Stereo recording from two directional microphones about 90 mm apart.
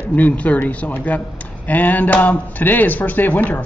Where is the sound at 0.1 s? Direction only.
15° left (ahead or behind).